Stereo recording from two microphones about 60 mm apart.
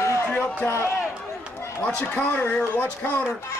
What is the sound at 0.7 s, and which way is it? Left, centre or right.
Speech, left.